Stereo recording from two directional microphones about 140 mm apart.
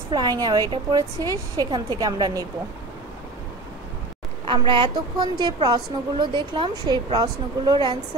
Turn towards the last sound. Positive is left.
turn(degrees=-30)  # may be behind; listen again after turning